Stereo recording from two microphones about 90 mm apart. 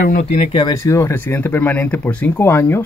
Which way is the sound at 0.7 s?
35° left (ahead or behind).